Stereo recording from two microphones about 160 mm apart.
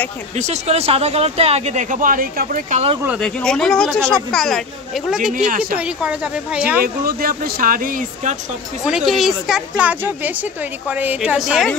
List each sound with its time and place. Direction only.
0.4 s speech: 45° right (ahead or behind); by 2.8 s 60° right (ahead or behind)
3.2 s speech: 5° left (ahead or behind)
5.3 s speech: 60° right (ahead or behind)
5.8 s speech: 5° right (ahead or behind)
6.8 s speech: 65° right (ahead or behind)
8.8 s speech: 5° right (ahead or behind)